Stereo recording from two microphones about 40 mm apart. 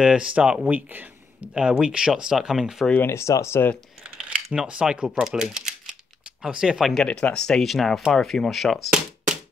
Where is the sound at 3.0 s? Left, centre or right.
Left.